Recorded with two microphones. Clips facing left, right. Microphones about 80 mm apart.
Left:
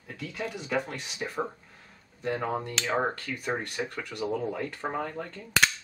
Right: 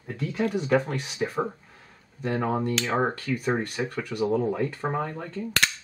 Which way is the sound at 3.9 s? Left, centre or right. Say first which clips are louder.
Right 6 dB; centre.